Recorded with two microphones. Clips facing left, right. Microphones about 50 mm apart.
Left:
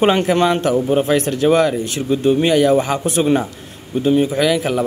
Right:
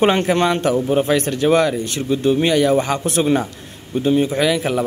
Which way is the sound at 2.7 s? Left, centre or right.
Left.